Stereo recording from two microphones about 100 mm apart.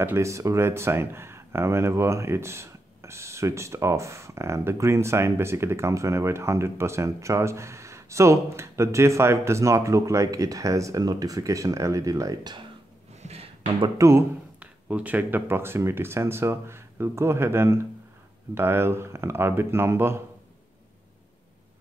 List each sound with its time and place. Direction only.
0.0 s speech: 25° right (ahead or behind)
13.9 s speech: 30° right (ahead or behind)
14.6 s speech: 15° right (ahead or behind)